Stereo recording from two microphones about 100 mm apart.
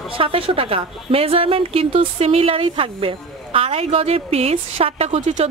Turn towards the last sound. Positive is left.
turn(degrees=-75)  # may be behind; listen again after turning